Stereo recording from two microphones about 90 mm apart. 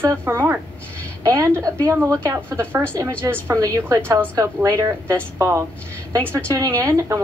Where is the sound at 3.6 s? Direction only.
40° right (ahead or behind).